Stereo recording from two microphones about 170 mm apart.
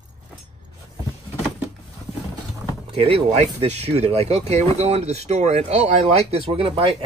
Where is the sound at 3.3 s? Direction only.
40° right (ahead or behind).